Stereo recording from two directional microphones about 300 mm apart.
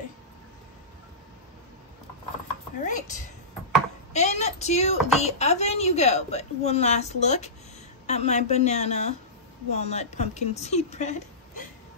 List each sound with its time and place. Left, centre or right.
2.8 s a woman's voice: left